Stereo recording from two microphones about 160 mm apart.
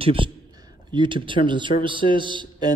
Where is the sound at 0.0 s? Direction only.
35° right (ahead or behind).